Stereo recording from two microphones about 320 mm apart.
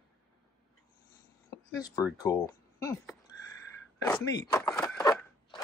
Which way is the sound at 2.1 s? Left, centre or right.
Centre.